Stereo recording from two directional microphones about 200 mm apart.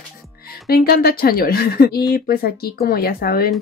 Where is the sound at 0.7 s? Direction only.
50° left (ahead or behind).